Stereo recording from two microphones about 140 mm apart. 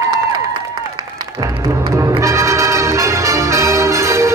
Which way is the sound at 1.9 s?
20° right (ahead or behind).